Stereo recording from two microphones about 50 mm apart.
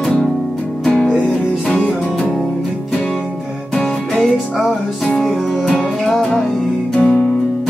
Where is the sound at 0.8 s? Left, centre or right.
Centre.